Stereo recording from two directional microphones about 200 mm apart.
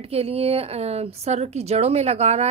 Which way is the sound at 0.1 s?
30° right (ahead or behind).